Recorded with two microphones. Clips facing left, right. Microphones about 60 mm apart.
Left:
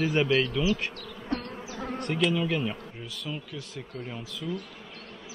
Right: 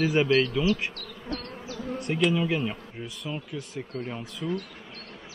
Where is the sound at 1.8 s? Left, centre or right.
Left.